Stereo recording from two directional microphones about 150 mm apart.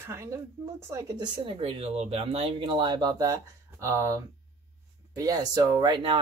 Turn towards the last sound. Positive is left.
turn(degrees=-30)  # may be behind; listen again after turning